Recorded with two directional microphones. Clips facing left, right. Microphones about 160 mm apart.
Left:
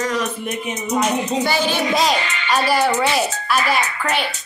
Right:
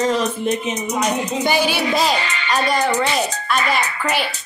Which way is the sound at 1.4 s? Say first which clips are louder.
Right 1 dB; 15° right (ahead or behind).